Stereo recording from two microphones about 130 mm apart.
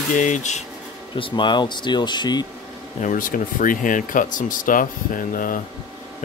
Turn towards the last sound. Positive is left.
turn(degrees=90)